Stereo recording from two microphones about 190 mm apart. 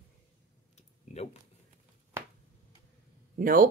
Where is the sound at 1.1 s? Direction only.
35° left (ahead or behind).